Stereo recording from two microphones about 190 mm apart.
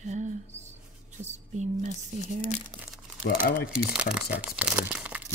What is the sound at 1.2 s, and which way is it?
Speech, 40° right (ahead or behind).